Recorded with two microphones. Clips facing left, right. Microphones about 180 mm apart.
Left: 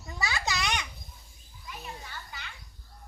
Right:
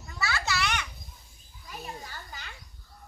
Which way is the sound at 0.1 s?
20° left (ahead or behind).